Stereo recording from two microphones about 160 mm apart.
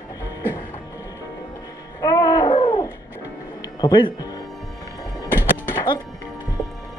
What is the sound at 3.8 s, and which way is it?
Speech, 25° left (ahead or behind).